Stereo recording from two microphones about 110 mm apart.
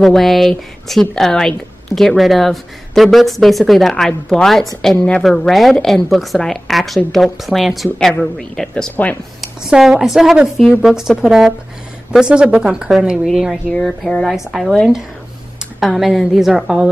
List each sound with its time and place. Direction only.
0.0 s a woman's voice: centre (ahead or behind)
9.4 s a woman's voice: 5° right (ahead or behind)